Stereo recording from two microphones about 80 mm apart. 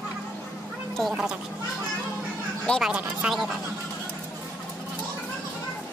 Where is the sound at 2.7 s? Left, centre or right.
Centre.